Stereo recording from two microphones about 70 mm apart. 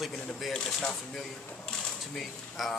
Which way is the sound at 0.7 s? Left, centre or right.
Centre.